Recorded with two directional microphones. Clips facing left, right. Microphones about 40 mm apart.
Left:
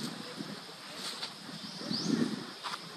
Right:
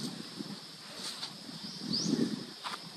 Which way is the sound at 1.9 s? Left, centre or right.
Left.